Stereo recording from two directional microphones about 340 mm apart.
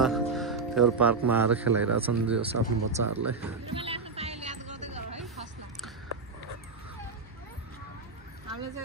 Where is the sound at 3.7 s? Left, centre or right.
Centre.